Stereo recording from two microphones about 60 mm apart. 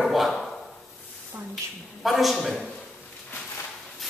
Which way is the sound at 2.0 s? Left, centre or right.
Centre.